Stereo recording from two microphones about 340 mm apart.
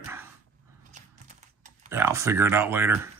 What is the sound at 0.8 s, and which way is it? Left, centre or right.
Typing, right.